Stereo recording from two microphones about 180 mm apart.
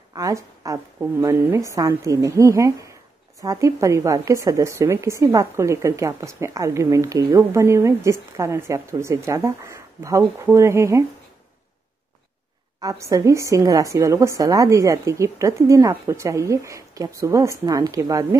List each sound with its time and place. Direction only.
0.1 s a woman's voice: 20° right (ahead or behind)
12.8 s a woman's voice: 20° right (ahead or behind)